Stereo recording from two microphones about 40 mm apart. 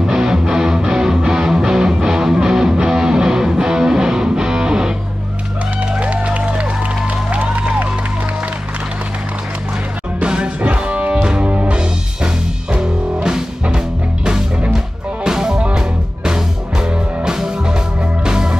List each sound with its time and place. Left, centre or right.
0.0 s music: centre
5.9 s music: right
10.2 s music: right
15.2 s music: centre